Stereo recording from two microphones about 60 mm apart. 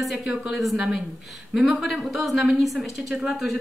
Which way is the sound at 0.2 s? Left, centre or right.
Centre.